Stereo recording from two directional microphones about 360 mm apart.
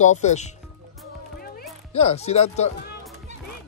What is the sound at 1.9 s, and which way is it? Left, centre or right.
Speech, centre.